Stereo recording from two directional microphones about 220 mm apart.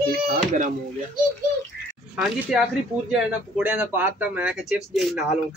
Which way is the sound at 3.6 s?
5° right (ahead or behind).